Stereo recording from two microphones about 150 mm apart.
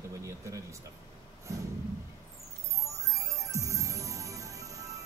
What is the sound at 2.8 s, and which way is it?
Music, 20° right (ahead or behind).